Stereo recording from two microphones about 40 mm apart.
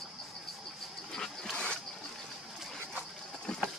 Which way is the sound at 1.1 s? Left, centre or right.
Centre.